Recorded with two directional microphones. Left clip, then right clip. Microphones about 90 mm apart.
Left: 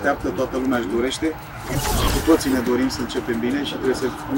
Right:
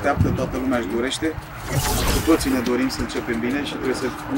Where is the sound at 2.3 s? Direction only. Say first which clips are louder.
Left 1 dB; centre (ahead or behind).